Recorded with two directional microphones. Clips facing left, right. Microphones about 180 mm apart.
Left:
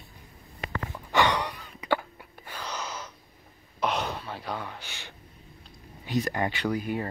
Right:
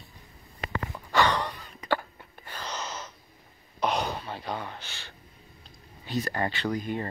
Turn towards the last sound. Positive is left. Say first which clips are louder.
# left 1 dB
turn(degrees=10)  # may be behind; listen again after turning